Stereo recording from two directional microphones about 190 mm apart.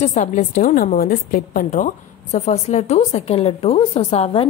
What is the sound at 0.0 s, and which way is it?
A woman's voice, 40° left (ahead or behind).